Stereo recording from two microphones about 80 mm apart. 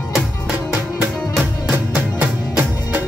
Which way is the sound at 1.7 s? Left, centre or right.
Right.